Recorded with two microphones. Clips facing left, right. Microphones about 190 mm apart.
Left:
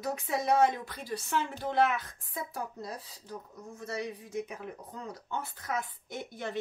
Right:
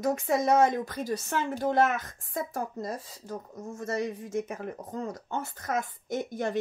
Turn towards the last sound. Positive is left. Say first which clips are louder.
# right 8 dB
turn(degrees=-45)  # may be behind; listen again after turning